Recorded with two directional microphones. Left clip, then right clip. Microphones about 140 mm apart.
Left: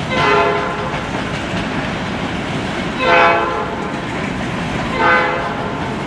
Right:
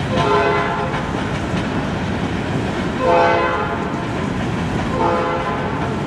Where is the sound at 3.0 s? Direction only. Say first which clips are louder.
Left 3 dB; 20° left (ahead or behind).